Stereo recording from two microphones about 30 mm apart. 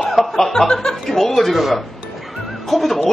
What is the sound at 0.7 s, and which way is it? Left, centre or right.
Speech, left.